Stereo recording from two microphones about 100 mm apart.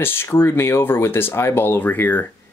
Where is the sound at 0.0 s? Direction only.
20° left (ahead or behind).